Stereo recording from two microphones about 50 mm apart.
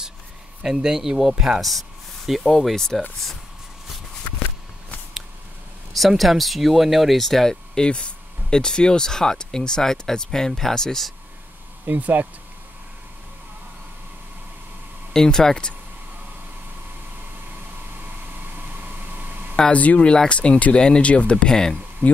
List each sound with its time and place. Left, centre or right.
0.8 s speech: centre
1.6 s speech: centre
5.9 s speech: centre
11.8 s speech: right
15.1 s speech: centre
18.6 s a sound: right
19.7 s speech: left